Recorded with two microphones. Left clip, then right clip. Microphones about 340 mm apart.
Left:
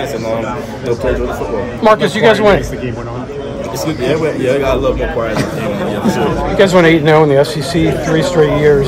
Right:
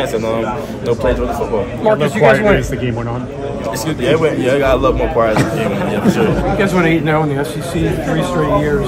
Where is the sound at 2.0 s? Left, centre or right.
Left.